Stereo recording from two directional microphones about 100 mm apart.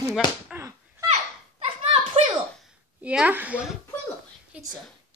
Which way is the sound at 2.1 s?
65° right (ahead or behind).